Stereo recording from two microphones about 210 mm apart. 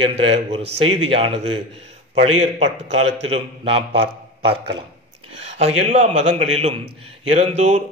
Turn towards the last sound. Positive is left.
turn(degrees=-30)  # may be behind; listen again after turning